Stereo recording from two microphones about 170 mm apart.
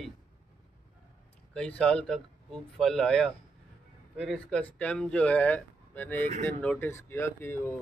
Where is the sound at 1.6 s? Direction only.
5° left (ahead or behind).